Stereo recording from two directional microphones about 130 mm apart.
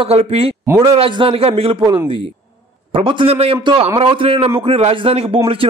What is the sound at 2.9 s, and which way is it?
Speech, 40° right (ahead or behind).